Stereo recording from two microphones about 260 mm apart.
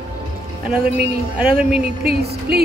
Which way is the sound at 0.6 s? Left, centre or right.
Centre.